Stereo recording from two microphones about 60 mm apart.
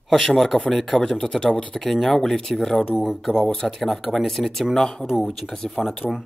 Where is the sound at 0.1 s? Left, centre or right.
Centre.